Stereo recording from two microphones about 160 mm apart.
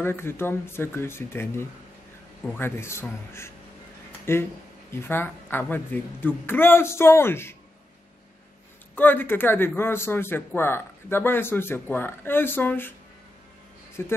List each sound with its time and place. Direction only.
0.0 s a man's voice: 15° left (ahead or behind)
8.9 s a man's voice: 10° left (ahead or behind)
14.0 s a man's voice: 15° left (ahead or behind)